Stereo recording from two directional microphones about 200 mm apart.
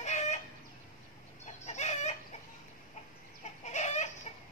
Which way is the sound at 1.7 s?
35° left (ahead or behind).